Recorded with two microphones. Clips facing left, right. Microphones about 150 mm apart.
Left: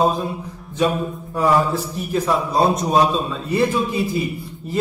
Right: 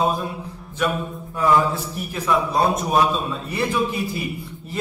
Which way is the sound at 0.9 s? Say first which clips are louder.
Left 3 dB; 35° left (ahead or behind).